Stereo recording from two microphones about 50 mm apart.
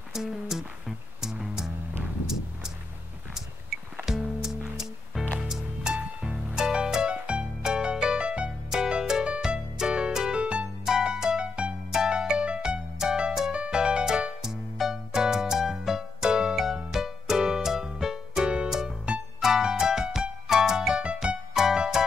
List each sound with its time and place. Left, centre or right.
0.1 s music: centre
4.0 s music: centre
19.1 s music: right
19.4 s music: centre
21.0 s music: right
21.5 s music: centre